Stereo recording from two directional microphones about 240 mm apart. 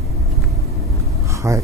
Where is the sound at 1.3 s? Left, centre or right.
Centre.